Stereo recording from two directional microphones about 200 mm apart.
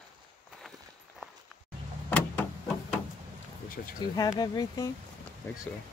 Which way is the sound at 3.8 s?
50° left (ahead or behind).